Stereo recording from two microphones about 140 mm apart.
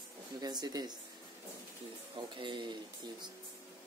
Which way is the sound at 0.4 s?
30° right (ahead or behind).